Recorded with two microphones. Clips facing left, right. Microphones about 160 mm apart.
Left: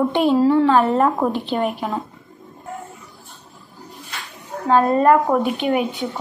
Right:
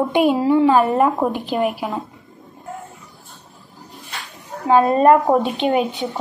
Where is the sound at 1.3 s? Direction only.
5° right (ahead or behind).